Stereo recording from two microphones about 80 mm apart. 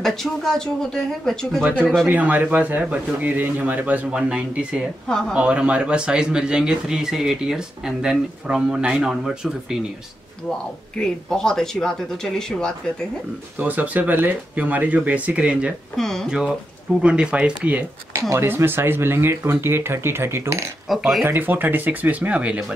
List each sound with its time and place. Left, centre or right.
0.0 s speech: centre
1.6 s a man's voice: centre
11.0 s speech: centre
13.6 s a man's voice: right
16.0 s speech: centre
16.3 s speech: centre
18.3 s speech: right
21.2 s a man's voice: right